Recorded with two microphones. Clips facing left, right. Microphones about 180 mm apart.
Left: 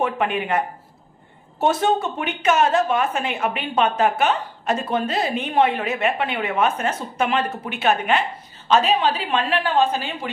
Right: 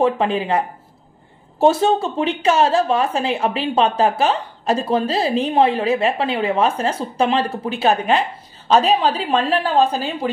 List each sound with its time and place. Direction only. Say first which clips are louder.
0.0 s a woman's voice: right 5 dB; 30° right (ahead or behind)